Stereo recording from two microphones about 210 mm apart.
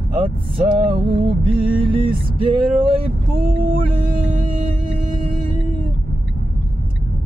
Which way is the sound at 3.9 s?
25° right (ahead or behind).